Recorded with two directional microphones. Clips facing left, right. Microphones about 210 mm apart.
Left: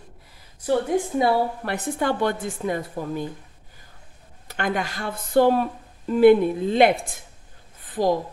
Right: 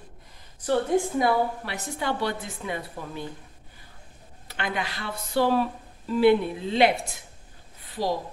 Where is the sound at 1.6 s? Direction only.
55° left (ahead or behind).